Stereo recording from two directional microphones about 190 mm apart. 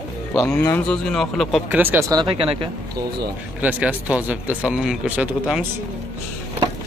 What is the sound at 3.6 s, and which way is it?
Speech, 5° right (ahead or behind).